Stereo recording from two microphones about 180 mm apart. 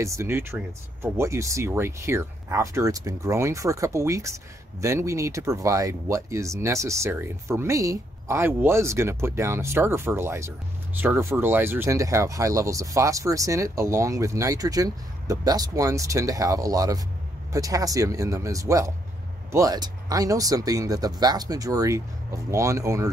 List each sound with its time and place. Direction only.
0.0 s speech: 15° right (ahead or behind)